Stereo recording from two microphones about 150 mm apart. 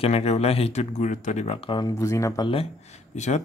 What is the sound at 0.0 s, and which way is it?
Speech, 40° left (ahead or behind).